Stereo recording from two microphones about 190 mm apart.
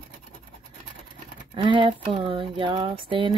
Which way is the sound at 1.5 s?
25° right (ahead or behind).